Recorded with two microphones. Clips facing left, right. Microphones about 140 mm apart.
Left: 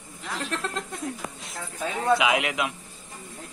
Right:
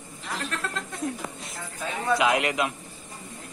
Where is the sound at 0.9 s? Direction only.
Centre (ahead or behind).